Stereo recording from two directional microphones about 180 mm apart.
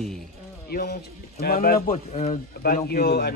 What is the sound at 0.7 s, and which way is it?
Speech, 55° left (ahead or behind).